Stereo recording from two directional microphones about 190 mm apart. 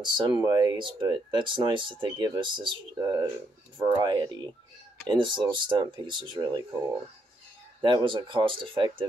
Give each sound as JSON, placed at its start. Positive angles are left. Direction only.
{"t": 0.0, "sound": "speech", "side_deg": -20}
{"t": 7.8, "sound": "speech", "side_deg": -25}